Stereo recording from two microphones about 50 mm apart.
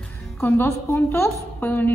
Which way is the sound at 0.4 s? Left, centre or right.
Left.